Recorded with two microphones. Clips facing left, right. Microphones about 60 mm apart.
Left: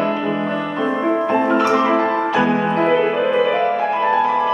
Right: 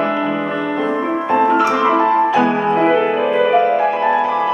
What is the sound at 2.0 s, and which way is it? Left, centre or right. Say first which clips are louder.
Music: right 4 dB; centre.